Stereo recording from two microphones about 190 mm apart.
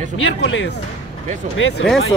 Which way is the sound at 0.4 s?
70° left (ahead or behind).